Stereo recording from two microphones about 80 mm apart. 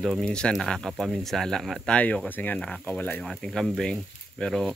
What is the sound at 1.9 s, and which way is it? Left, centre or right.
Speech, centre.